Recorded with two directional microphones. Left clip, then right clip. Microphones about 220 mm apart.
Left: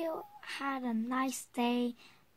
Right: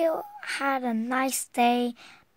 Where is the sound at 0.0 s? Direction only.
45° right (ahead or behind).